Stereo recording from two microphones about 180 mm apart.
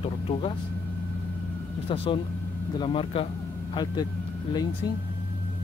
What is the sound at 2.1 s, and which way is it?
Speech, 25° left (ahead or behind).